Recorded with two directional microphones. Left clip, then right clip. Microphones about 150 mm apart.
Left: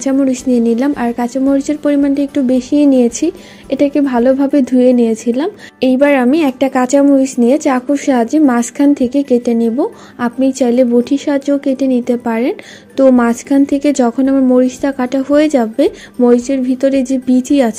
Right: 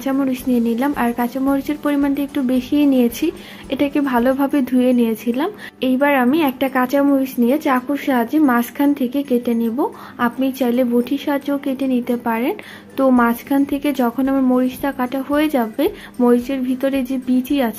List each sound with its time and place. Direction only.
0.0 s a woman's voice: 45° left (ahead or behind)